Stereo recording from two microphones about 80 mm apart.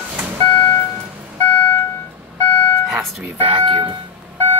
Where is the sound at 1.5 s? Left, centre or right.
Left.